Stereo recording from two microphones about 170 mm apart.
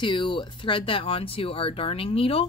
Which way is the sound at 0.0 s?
30° left (ahead or behind).